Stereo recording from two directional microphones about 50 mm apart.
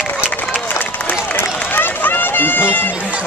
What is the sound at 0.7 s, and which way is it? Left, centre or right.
Run, left.